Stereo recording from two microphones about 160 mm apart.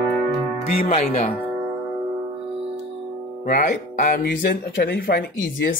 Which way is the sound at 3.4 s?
55° left (ahead or behind).